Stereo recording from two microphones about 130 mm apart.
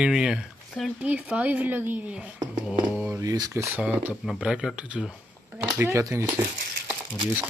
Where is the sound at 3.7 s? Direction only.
5° right (ahead or behind).